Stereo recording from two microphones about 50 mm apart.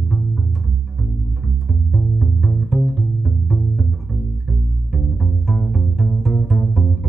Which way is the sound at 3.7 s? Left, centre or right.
Centre.